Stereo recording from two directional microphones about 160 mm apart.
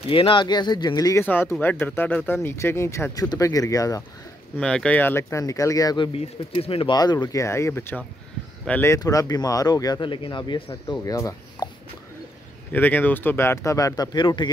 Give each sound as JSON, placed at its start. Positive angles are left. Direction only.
{"t": 0.1, "sound": "speech", "side_deg": 35}
{"t": 4.6, "sound": "speech", "side_deg": 5}
{"t": 6.1, "sound": "speech", "side_deg": 40}
{"t": 12.7, "sound": "speech", "side_deg": 10}